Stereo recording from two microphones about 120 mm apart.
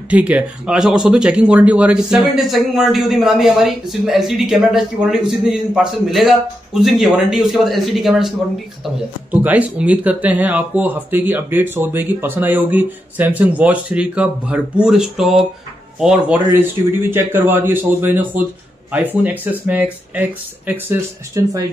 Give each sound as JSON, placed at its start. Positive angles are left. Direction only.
{"t": 0.1, "sound": "speech", "side_deg": -10}
{"t": 9.3, "sound": "speech", "side_deg": -15}